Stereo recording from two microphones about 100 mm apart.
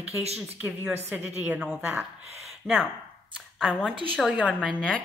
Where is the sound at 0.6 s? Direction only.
10° right (ahead or behind).